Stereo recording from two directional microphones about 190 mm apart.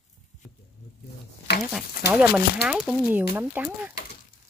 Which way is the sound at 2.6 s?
5° right (ahead or behind).